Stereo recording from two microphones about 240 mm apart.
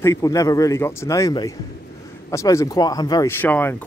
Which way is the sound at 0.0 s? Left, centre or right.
Centre.